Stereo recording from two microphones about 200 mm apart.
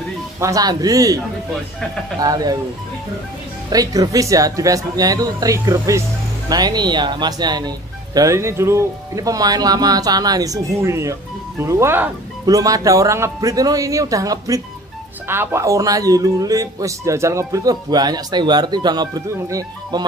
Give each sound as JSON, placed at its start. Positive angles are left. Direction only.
{"t": 0.4, "sound": "a man's voice", "side_deg": -15}
{"t": 3.7, "sound": "a man's voice", "side_deg": -20}